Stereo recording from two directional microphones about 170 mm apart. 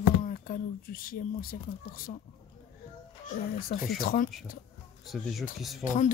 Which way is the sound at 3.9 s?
60° left (ahead or behind).